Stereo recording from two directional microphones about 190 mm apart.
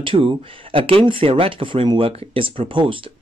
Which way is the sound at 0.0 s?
25° right (ahead or behind).